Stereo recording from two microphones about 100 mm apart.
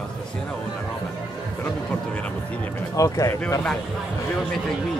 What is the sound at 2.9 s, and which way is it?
Speech, 35° left (ahead or behind).